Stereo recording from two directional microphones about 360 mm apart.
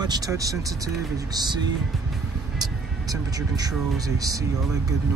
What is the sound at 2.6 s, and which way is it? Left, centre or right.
Speech, centre.